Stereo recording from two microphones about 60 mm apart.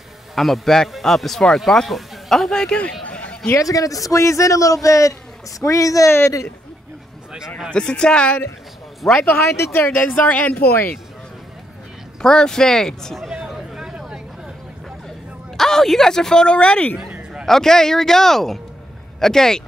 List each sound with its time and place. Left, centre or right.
0.4 s a man's voice: centre; by 3.5 s left
3.5 s speech: left
6.0 s a man's voice: left
7.7 s speech: centre
9.0 s speech: centre
9.6 s speech: left
12.2 s speech: centre
13.3 s a sound: centre
15.0 s speech: centre
17.5 s speech: centre